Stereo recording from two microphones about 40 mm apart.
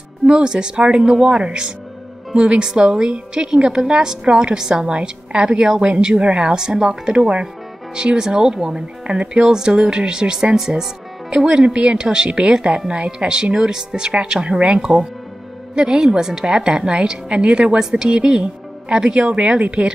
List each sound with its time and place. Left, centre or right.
0.3 s a woman's voice: right
9.0 s a woman's voice: right